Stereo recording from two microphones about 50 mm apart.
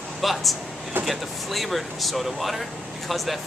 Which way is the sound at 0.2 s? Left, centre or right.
Centre.